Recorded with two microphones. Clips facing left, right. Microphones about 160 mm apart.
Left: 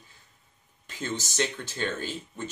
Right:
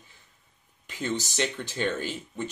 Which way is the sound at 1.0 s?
15° right (ahead or behind).